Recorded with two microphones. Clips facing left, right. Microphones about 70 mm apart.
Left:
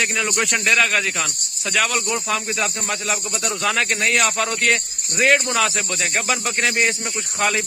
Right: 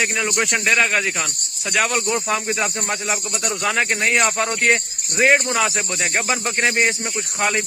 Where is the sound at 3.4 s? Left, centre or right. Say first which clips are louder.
Right 1 dB; centre.